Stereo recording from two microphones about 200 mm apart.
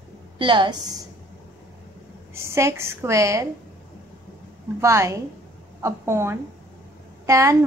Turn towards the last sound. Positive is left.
turn(degrees=-15)  # may be behind; listen again after turning